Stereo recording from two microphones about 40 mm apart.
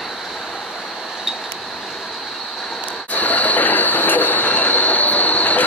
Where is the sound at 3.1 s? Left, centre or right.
Left.